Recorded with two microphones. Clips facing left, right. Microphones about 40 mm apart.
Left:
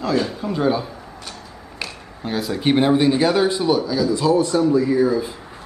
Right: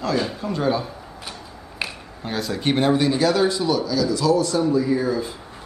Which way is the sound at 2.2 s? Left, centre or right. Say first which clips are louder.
Left 3 dB; centre.